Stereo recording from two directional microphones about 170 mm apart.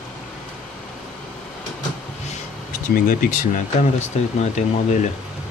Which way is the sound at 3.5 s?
45° left (ahead or behind).